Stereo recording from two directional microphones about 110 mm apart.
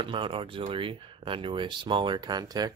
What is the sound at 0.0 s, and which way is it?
Speech, 50° right (ahead or behind).